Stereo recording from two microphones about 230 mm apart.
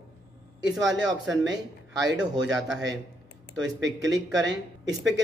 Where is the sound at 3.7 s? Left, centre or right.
Right.